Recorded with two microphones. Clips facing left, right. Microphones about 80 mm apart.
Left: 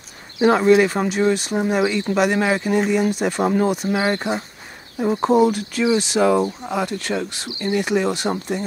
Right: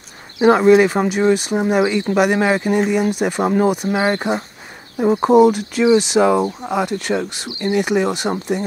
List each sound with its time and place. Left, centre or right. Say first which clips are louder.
0.4 s speech: right 3 dB; centre